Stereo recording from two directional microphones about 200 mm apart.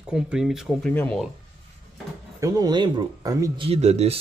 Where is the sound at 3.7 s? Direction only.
35° right (ahead or behind).